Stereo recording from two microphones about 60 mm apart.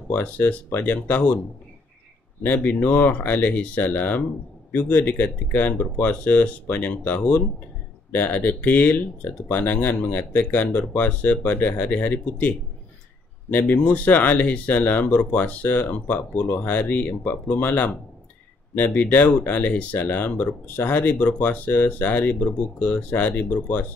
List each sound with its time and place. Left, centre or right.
0.1 s speech: left
2.4 s speech: left